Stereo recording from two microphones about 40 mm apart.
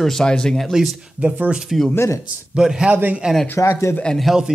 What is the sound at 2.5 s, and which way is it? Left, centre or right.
Speech, centre.